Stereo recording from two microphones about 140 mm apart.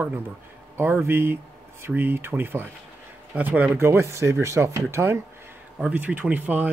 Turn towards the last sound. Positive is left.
turn(degrees=-10)  # may be behind; listen again after turning